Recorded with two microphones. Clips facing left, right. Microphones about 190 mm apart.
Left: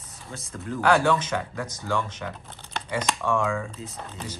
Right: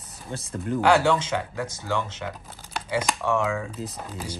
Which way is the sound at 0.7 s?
10° right (ahead or behind).